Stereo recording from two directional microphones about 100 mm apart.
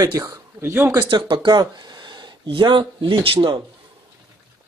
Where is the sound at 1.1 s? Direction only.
55° right (ahead or behind).